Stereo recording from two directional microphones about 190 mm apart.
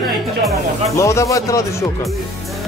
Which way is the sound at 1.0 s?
15° left (ahead or behind).